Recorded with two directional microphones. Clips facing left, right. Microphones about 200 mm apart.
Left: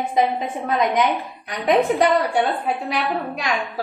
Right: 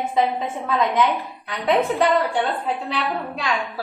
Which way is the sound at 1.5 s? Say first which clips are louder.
Left 2 dB; 15° left (ahead or behind).